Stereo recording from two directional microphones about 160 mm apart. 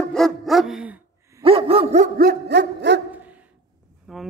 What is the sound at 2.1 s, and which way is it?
Dog, 70° right (ahead or behind).